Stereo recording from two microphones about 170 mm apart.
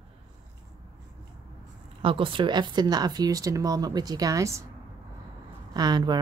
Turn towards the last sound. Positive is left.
turn(degrees=-25)  # may be behind; listen again after turning